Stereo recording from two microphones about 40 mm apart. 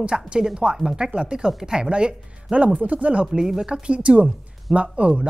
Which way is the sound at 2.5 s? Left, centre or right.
Right.